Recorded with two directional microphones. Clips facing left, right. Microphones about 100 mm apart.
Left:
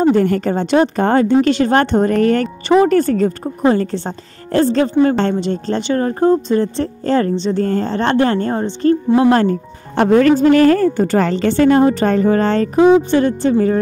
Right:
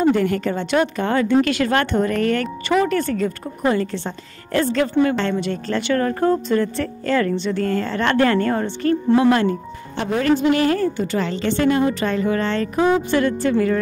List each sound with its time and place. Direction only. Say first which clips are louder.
0.1 s a woman's voice: left 5 dB; 40° left (ahead or behind); by 9.3 s 25° left (ahead or behind)
9.3 s speech: left 4 dB; 45° left (ahead or behind)
10.4 s a woman's voice: left 7 dB; 45° left (ahead or behind)
12.7 s a woman's voice: left 7 dB; 20° left (ahead or behind)